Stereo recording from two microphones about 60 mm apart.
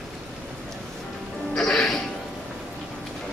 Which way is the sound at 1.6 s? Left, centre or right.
Centre.